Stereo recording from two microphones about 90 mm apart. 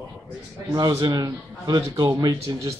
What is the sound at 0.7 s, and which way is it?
Speech, 50° right (ahead or behind).